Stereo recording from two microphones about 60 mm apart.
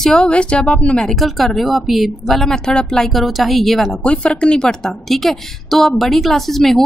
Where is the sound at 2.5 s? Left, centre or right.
Centre.